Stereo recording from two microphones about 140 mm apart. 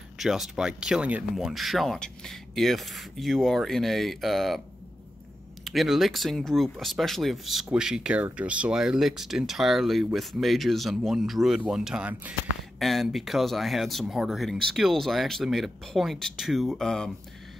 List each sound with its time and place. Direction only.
0.2 s speech: 5° right (ahead or behind)
5.6 s speech: centre (ahead or behind)